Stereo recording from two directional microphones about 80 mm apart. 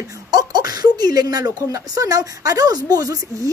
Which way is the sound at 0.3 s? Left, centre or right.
Right.